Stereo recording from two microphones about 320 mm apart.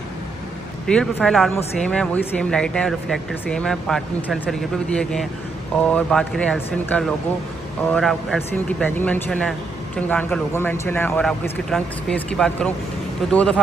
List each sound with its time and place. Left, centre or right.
0.8 s speech: centre